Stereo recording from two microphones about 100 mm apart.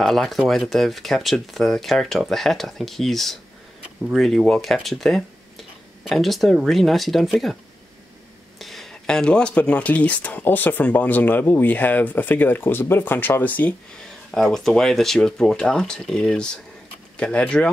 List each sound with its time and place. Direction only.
0.0 s speech: centre (ahead or behind)
8.5 s speech: centre (ahead or behind)
14.3 s speech: 5° left (ahead or behind)